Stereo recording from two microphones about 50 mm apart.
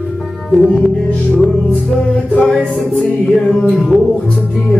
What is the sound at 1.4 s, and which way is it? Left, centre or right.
Music, centre.